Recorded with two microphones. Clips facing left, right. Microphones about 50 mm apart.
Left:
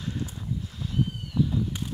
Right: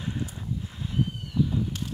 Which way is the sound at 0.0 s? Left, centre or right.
Right.